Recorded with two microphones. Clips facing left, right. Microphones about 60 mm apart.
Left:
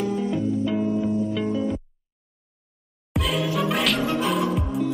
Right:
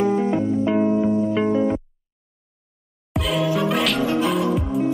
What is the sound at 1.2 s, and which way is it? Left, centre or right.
Music, right.